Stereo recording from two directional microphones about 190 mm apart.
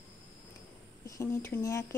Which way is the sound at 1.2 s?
15° left (ahead or behind).